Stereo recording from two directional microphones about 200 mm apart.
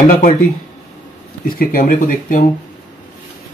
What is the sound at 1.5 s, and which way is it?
Speech, 45° left (ahead or behind).